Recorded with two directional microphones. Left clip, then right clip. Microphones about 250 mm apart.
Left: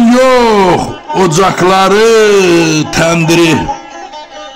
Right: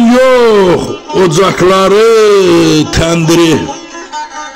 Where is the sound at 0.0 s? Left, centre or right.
Centre.